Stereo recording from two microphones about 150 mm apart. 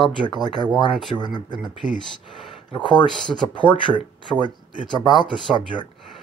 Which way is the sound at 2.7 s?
30° left (ahead or behind).